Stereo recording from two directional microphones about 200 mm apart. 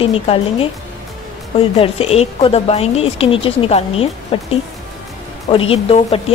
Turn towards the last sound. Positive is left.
turn(degrees=30)  # may be behind; listen again after turning